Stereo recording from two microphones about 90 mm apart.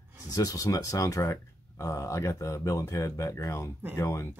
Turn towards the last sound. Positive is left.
turn(degrees=35)  # may be behind; listen again after turning